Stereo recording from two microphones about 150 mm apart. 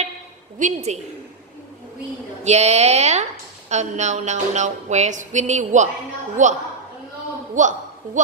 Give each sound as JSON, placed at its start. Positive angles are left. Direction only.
{"t": 0.6, "sound": "a woman's voice", "side_deg": -50}
{"t": 2.4, "sound": "a woman's voice", "side_deg": -45}